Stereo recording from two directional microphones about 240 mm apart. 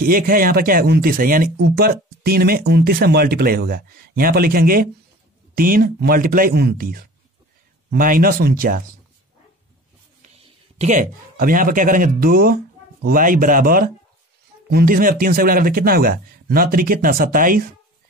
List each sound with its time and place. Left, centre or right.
0.0 s speech: right
10.8 s speech: right